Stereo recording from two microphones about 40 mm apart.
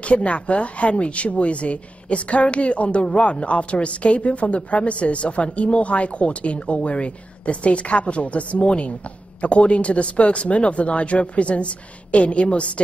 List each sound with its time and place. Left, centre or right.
0.0 s speech: left